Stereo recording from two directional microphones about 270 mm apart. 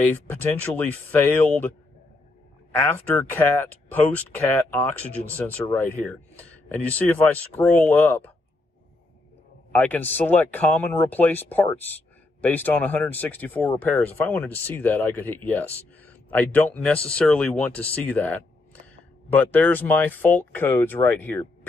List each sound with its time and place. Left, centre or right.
0.0 s speech: centre
2.8 s speech: centre
9.8 s speech: centre